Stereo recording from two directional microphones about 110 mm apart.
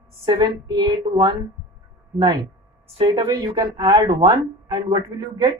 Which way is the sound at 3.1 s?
35° right (ahead or behind).